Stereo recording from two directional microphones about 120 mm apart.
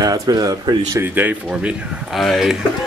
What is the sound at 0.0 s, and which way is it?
Speech, 30° right (ahead or behind).